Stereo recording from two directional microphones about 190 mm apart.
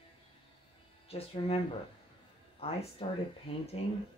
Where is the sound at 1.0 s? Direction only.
30° left (ahead or behind).